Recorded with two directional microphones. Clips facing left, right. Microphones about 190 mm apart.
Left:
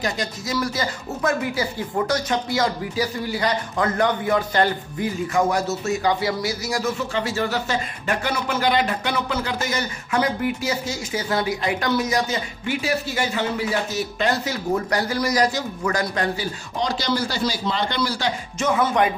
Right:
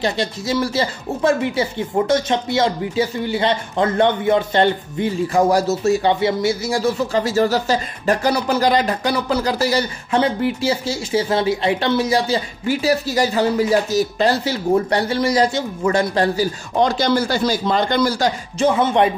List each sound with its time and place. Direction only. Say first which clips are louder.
0.0 s speech: right 5 dB; 30° right (ahead or behind)
16.7 s speech: right 7 dB; 55° right (ahead or behind)
18.6 s speech: right 5 dB; 30° right (ahead or behind)